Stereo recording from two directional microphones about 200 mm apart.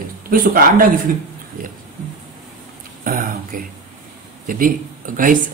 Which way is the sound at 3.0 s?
45° right (ahead or behind).